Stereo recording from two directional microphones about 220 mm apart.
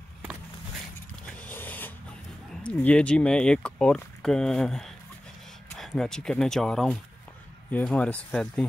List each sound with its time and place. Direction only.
1.2 s vehicle: 5° left (ahead or behind)
2.5 s speech: 5° left (ahead or behind)